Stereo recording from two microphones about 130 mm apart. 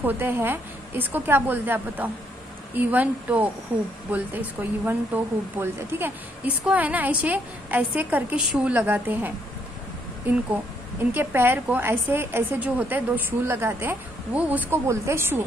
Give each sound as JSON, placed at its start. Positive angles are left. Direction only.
{"t": 0.0, "sound": "a woman's voice", "side_deg": -15}